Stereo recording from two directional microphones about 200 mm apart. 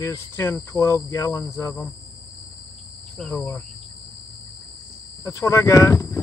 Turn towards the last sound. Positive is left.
turn(degrees=15)  # may be behind; listen again after turning